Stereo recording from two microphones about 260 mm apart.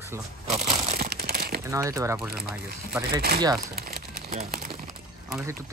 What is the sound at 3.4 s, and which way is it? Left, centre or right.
Speech, centre.